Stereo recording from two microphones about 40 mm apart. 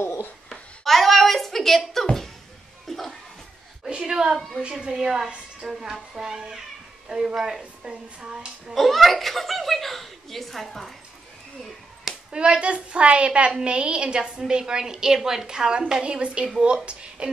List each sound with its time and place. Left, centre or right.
0.5 s a sound: centre
2.9 s music: centre
4.0 s a sound: centre
4.6 s a woman's voice: right
4.9 s a woman's voice: centre
7.9 s a woman's voice: right
8.7 s speech: centre
12.3 s a woman's voice: right